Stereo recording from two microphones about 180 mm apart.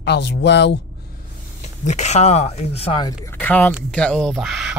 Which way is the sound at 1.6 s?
40° left (ahead or behind).